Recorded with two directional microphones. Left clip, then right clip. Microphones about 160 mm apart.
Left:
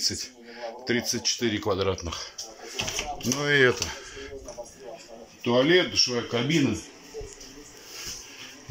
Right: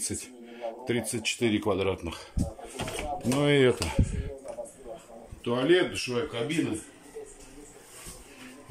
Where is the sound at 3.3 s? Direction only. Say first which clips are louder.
Left 2 dB; 10° right (ahead or behind).